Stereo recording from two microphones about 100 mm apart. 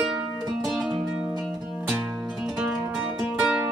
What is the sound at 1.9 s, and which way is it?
Music, 20° right (ahead or behind).